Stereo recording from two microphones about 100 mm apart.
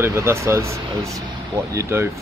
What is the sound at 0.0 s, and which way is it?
Speech, 25° right (ahead or behind).